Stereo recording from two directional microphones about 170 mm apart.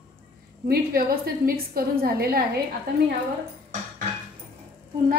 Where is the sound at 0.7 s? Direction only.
60° right (ahead or behind).